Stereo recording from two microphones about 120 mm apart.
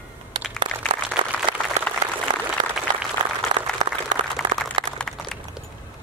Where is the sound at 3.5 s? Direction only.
45° right (ahead or behind).